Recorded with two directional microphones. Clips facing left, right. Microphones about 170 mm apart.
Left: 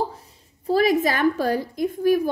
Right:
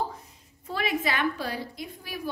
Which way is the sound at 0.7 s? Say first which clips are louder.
Left 10 dB; 40° left (ahead or behind).